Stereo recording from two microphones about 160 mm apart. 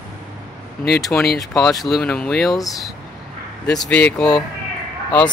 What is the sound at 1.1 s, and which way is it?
Speech, 10° left (ahead or behind).